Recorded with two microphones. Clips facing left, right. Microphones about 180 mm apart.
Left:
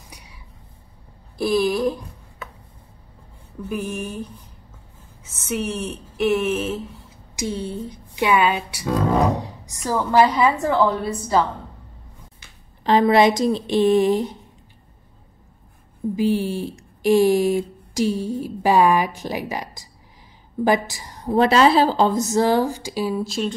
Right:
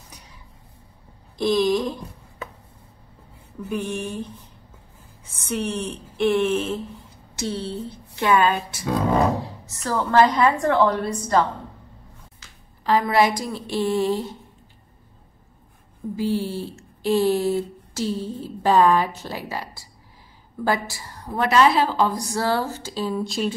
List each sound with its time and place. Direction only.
1.4 s speech: 5° left (ahead or behind)
3.6 s a woman's voice: 5° left (ahead or behind)
5.5 s a woman's voice: 5° left (ahead or behind)
12.8 s a woman's voice: 20° left (ahead or behind)
16.2 s a woman's voice: 15° left (ahead or behind)
23.2 s a woman's voice: centre (ahead or behind)